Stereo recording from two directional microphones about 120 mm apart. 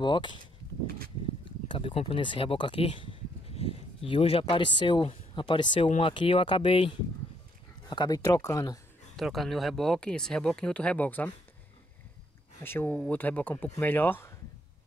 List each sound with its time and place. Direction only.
0.0 s speech: 40° left (ahead or behind)
1.4 s speech: 45° left (ahead or behind)
7.9 s speech: 35° left (ahead or behind)
9.1 s speech: centre (ahead or behind)
12.6 s speech: 20° left (ahead or behind)